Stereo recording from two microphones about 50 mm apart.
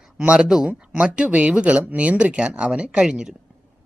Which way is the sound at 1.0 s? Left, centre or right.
Right.